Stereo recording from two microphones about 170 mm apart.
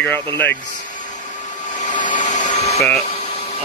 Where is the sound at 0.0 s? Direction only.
10° left (ahead or behind).